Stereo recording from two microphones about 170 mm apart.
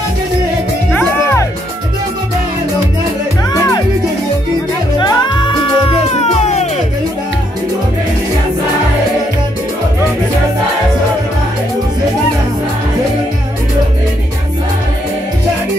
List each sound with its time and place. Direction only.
0.9 s music: 15° left (ahead or behind)
4.9 s music: 25° left (ahead or behind); by 6.7 s 40° left (ahead or behind)